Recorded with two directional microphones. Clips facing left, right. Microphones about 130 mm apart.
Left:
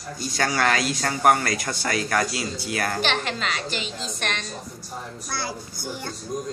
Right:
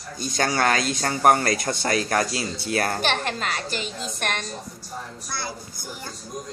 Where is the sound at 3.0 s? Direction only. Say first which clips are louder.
Even; 45° right (ahead or behind).